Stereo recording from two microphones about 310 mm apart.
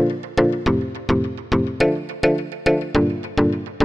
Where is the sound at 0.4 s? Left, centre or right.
Centre.